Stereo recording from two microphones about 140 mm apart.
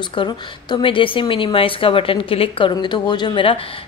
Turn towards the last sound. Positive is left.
turn(degrees=40)  # may be behind; listen again after turning